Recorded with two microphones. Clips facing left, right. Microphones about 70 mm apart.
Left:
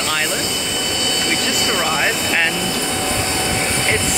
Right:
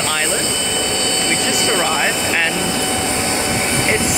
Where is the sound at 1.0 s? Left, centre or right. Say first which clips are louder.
Right 1 dB; right.